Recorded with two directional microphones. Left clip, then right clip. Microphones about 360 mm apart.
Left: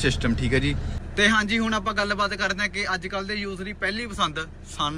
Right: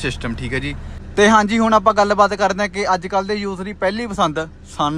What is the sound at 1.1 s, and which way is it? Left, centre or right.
Speech, centre.